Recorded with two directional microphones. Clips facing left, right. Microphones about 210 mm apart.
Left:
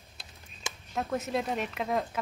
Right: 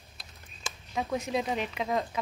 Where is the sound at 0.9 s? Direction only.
Centre (ahead or behind).